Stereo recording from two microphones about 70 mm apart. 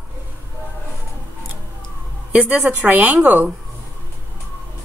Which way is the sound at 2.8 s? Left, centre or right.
Right.